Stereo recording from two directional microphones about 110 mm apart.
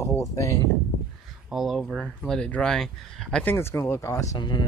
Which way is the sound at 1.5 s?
Centre (ahead or behind).